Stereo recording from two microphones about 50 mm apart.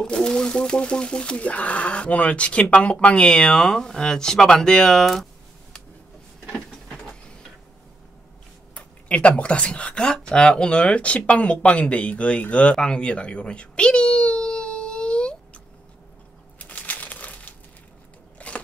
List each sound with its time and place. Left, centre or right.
0.0 s speech: centre
8.7 s speech: left
12.7 s baby cry: centre
16.5 s a sound: left
18.4 s crunch: left